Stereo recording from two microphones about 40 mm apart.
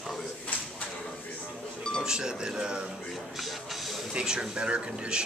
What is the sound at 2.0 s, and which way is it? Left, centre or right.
Speech, centre.